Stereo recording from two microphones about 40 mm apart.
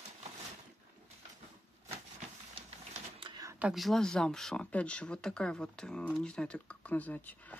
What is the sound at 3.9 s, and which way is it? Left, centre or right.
Speech, centre.